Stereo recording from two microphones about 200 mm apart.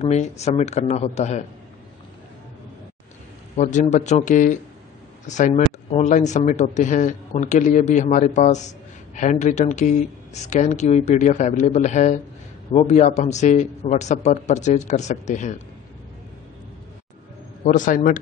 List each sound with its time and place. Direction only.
0.0 s speech: 35° left (ahead or behind)
3.5 s speech: 35° left (ahead or behind)
17.6 s speech: 40° left (ahead or behind)